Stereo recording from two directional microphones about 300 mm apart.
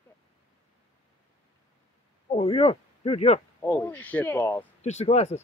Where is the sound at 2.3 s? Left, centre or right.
Centre.